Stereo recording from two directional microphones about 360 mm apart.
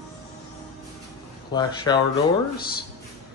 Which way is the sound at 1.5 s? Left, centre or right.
Centre.